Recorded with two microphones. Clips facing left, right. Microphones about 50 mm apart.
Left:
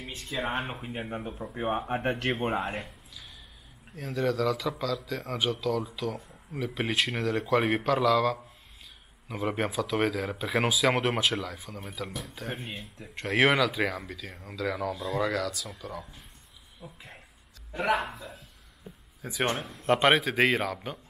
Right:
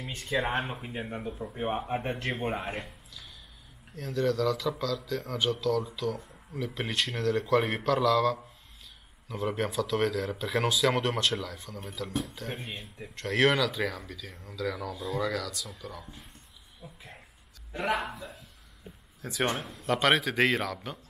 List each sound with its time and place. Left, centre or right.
0.6 s a man's voice: centre
1.5 s speech: left
2.0 s speech: left
2.7 s a man's voice: centre
17.7 s a man's voice: centre
19.8 s speech: left
20.1 s speech: centre